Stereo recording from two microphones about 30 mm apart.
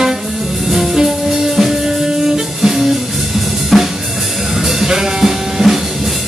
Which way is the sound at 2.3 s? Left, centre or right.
Centre.